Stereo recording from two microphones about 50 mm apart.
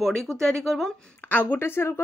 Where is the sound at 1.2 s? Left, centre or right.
Left.